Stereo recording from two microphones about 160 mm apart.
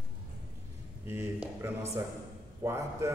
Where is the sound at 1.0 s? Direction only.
15° right (ahead or behind).